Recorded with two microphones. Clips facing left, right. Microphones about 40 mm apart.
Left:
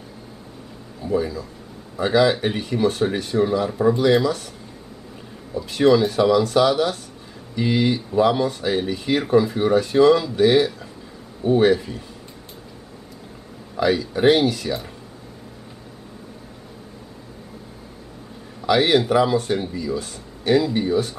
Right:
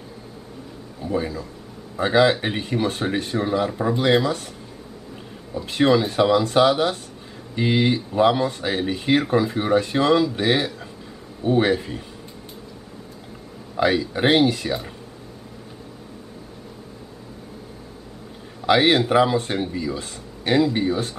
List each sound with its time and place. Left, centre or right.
1.1 s speech: right
2.4 s a man's voice: right
3.6 s speech: centre
4.0 s a man's voice: right
5.7 s a man's voice: right
13.7 s speech: right
18.7 s a man's voice: right
20.7 s speech: right